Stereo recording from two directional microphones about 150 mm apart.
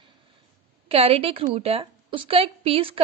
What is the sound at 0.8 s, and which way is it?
A woman's voice, 40° right (ahead or behind).